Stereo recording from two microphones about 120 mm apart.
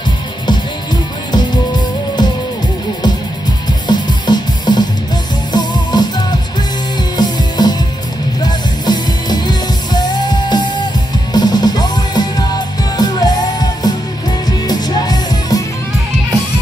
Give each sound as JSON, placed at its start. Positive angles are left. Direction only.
{"t": 1.3, "sound": "music", "side_deg": 35}
{"t": 3.8, "sound": "music", "side_deg": 35}